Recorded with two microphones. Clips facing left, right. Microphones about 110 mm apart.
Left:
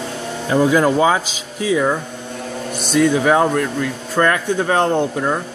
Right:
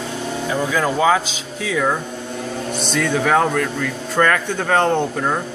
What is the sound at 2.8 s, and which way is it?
Speech, 10° left (ahead or behind).